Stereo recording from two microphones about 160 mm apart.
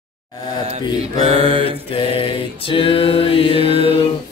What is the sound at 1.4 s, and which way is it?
Mantra, 35° right (ahead or behind).